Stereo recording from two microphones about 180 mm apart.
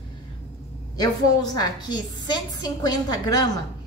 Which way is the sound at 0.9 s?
20° left (ahead or behind).